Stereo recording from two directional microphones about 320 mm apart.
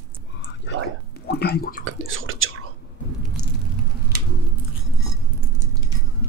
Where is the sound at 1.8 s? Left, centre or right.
Right.